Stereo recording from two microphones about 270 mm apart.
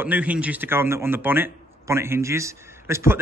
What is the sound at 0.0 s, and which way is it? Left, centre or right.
Speech, centre.